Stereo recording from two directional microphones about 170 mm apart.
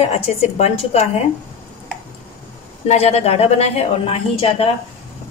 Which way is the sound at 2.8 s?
40° left (ahead or behind).